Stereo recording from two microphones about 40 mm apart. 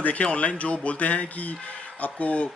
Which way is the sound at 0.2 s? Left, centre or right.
Left.